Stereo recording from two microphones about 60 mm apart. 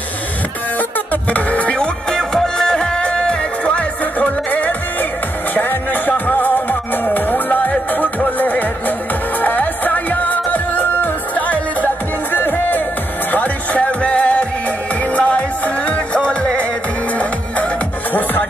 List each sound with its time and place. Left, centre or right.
0.7 s music: left
18.1 s music: left